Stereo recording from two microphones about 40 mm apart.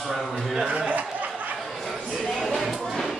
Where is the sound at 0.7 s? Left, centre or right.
Right.